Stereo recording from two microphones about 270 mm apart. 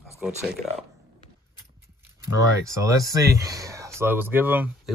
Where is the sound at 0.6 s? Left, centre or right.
Centre.